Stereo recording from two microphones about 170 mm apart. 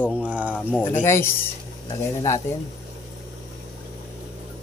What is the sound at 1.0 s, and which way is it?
Speech, 15° left (ahead or behind).